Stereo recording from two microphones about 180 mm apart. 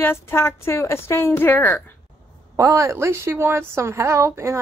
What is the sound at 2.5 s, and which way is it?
A woman's voice, 15° right (ahead or behind).